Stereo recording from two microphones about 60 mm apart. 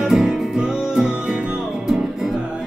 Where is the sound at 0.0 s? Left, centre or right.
Centre.